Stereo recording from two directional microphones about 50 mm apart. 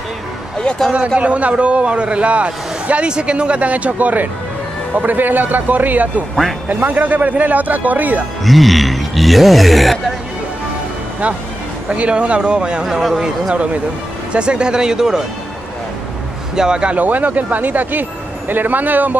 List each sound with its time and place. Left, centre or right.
0.9 s a man's voice: right
8.5 s a sound: centre
11.9 s a man's voice: right
16.5 s speech: centre
16.9 s a man's voice: right